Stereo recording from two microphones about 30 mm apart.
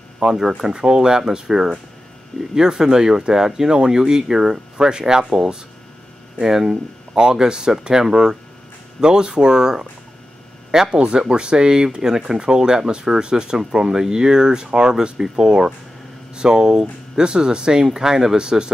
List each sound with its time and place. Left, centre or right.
0.2 s speech: centre
11.2 s speech: right